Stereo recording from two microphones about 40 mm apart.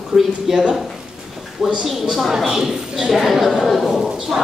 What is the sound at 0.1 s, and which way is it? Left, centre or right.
Speech, right.